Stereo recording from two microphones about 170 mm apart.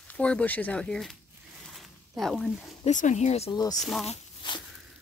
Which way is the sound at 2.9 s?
45° left (ahead or behind).